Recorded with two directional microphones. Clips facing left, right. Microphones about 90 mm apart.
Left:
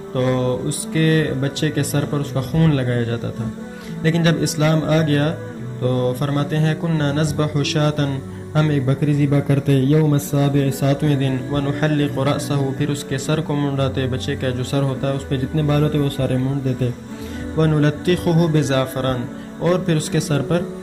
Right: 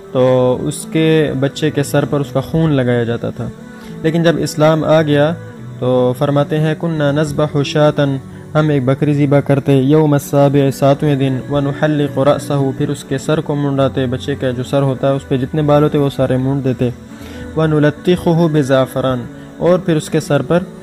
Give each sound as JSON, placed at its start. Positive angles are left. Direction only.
{"t": 0.1, "sound": "a man's voice", "side_deg": -55}
{"t": 11.0, "sound": "a man's voice", "side_deg": -50}
{"t": 13.5, "sound": "speech", "side_deg": -25}
{"t": 13.7, "sound": "a man's voice", "side_deg": -45}
{"t": 17.6, "sound": "a man's voice", "side_deg": -45}